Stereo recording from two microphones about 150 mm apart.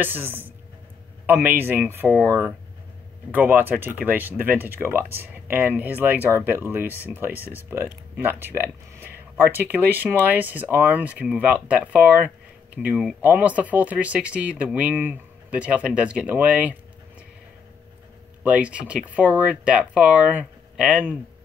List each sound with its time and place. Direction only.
0.0 s speech: 15° right (ahead or behind)
18.4 s speech: 10° right (ahead or behind)